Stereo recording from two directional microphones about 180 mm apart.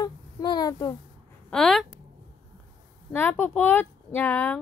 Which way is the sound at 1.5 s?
Centre (ahead or behind).